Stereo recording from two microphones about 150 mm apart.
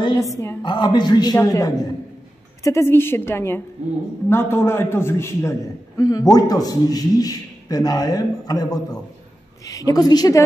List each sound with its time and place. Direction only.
0.4 s a man's voice: 20° left (ahead or behind)
0.7 s a man's voice: 30° left (ahead or behind)